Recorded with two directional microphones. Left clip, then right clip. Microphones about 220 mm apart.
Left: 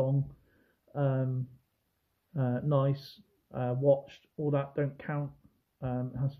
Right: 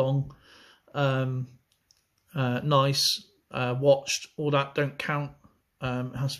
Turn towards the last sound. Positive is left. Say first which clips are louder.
# right 5 dB
turn(degrees=-10)  # may be behind; listen again after turning